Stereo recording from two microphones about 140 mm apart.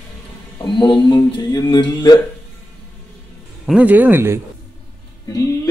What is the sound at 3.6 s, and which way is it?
Speech, 10° right (ahead or behind).